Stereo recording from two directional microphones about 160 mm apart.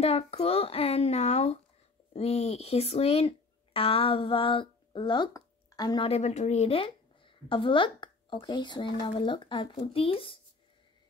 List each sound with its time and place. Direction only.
0.0 s a woman's voice: 40° left (ahead or behind)
6.0 s a woman's voice: 45° left (ahead or behind)